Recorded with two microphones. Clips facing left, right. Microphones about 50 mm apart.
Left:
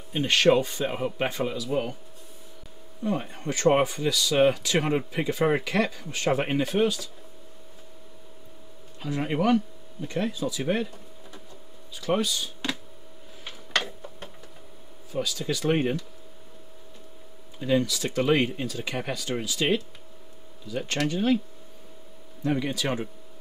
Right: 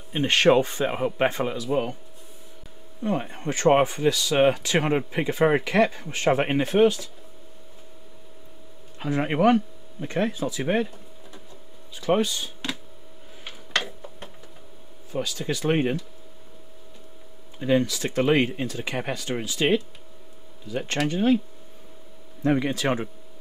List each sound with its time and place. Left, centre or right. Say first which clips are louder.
0.1 s speech: right 2 dB; right
1.7 s speech: right 4 dB; centre
3.0 s speech: right 2 dB; right
9.0 s speech: right 4 dB; right
13.5 s a sound: right 1 dB; centre
15.1 s speech: right 1 dB; right
17.6 s speech: right 2 dB; right
22.4 s speech: right 4 dB; right